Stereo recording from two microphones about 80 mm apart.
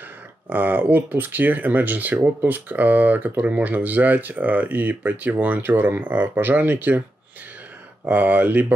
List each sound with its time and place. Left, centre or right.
0.5 s speech: right
8.0 s speech: right